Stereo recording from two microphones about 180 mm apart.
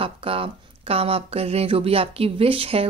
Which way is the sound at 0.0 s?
30° right (ahead or behind).